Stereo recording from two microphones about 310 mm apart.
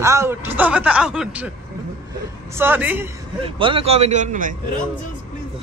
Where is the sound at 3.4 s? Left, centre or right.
Centre.